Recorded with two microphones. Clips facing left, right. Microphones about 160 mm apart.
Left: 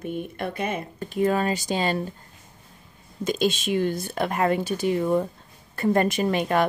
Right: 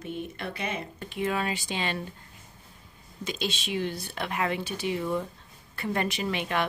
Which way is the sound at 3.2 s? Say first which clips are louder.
Left 9 dB; 45° left (ahead or behind).